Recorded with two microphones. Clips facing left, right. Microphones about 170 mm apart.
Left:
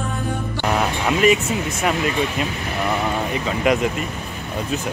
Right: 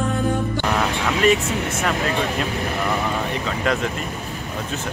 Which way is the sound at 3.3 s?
10° left (ahead or behind).